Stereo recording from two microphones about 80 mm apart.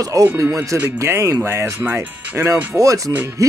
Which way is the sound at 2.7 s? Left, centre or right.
Right.